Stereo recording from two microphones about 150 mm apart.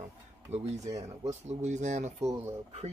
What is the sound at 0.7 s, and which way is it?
Speech, 25° right (ahead or behind).